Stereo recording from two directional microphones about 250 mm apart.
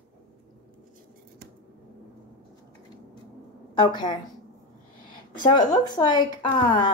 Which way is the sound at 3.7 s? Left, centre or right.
Centre.